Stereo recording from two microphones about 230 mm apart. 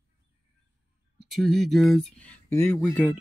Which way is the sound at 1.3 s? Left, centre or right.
Centre.